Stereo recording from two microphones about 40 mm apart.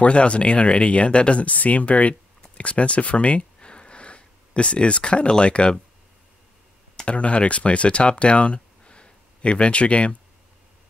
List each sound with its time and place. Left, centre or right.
0.0 s speech: left
7.1 s speech: left